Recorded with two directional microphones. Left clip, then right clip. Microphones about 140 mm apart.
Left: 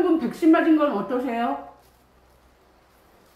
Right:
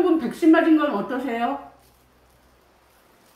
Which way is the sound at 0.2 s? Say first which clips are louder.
Right 1 dB; centre (ahead or behind).